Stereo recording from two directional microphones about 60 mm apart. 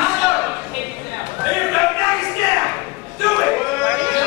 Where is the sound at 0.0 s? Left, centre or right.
Right.